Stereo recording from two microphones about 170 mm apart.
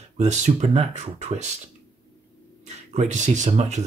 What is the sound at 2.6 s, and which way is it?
Speech, 40° right (ahead or behind).